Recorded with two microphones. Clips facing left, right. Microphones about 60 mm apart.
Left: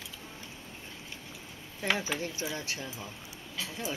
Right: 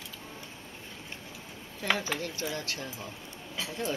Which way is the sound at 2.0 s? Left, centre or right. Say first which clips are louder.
Even; centre.